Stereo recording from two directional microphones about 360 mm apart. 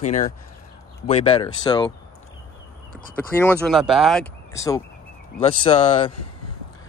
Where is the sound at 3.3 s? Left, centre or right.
Centre.